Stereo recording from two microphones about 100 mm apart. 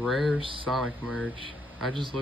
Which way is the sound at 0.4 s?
60° right (ahead or behind).